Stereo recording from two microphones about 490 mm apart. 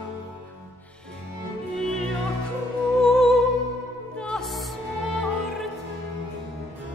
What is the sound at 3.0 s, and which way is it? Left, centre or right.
Music, centre.